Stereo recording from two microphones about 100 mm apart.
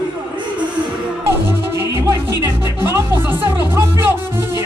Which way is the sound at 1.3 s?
25° right (ahead or behind).